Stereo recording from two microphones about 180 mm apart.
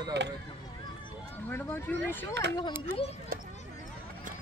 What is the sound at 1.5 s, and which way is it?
Speech, 10° left (ahead or behind).